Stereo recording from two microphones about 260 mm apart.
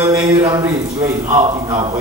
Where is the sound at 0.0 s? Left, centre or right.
Centre.